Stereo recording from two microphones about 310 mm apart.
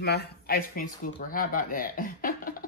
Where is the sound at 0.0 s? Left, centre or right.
Left.